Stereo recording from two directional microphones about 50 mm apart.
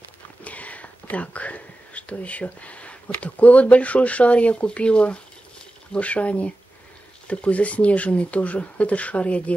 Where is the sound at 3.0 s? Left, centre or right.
Left.